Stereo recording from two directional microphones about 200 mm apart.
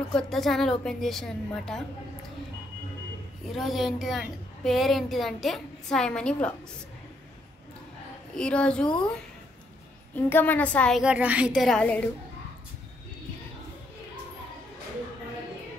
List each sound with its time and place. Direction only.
0.1 s a woman's voice: centre (ahead or behind)
3.5 s a woman's voice: centre (ahead or behind)
8.4 s a woman's voice: 5° left (ahead or behind)
10.1 s a woman's voice: 10° left (ahead or behind)